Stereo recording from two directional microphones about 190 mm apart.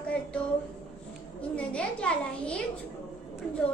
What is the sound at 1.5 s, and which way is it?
A child's voice, 5° left (ahead or behind).